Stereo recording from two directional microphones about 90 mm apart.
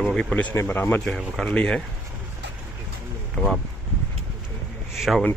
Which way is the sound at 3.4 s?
Centre (ahead or behind).